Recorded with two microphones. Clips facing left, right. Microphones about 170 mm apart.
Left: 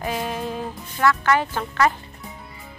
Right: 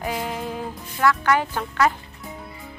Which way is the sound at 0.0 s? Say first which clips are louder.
Left 1 dB; 15° right (ahead or behind).